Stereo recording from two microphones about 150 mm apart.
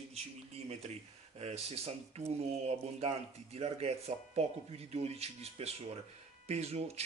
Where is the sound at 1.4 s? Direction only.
45° right (ahead or behind).